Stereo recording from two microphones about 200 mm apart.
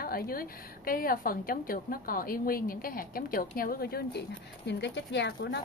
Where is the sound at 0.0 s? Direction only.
50° left (ahead or behind).